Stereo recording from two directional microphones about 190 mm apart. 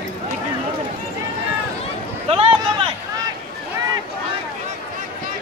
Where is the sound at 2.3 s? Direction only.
30° right (ahead or behind).